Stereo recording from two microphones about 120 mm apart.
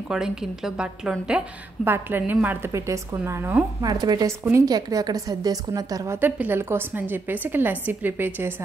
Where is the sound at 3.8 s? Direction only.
35° right (ahead or behind).